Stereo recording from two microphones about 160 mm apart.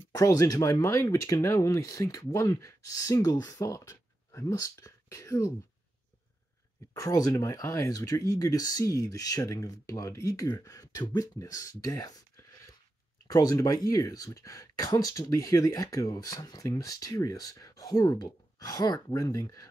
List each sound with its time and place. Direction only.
0.1 s speech: 20° left (ahead or behind)
6.9 s speech: 20° left (ahead or behind)